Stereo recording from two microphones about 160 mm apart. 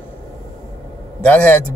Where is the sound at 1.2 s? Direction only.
10° left (ahead or behind).